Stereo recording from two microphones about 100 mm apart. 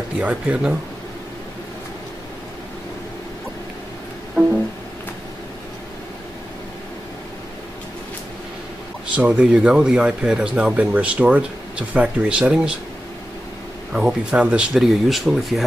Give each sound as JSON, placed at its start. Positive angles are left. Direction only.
{"t": 0.2, "sound": "speech", "side_deg": -15}
{"t": 9.1, "sound": "speech", "side_deg": -15}
{"t": 13.9, "sound": "speech", "side_deg": -10}